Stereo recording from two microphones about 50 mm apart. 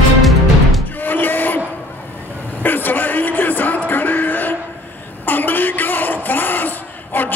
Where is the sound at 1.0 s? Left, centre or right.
Left.